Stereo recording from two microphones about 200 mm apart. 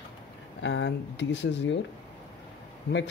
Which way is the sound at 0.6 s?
65° left (ahead or behind).